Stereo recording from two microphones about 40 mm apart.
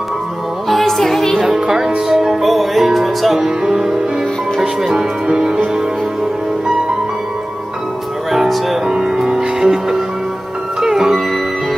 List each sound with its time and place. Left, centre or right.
0.7 s music: centre
1.4 s speech: centre
2.0 s music: centre
4.6 s speech: centre
8.3 s music: centre
8.8 s music: centre